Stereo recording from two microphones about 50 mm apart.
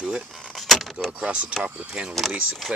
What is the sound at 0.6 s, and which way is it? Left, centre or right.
Keys jangling, centre.